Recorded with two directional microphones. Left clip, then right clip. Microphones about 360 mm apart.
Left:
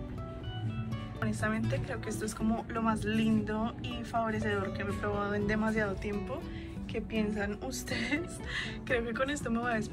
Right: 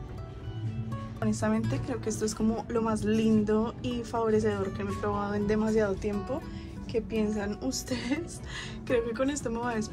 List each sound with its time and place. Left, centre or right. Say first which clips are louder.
1.2 s speech: right 4 dB; centre